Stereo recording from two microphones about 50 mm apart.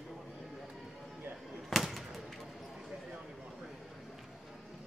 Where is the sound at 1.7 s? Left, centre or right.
Centre.